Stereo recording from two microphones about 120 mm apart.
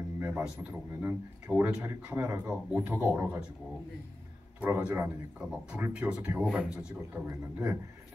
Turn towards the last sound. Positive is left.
turn(degrees=-20)  # may be behind; listen again after turning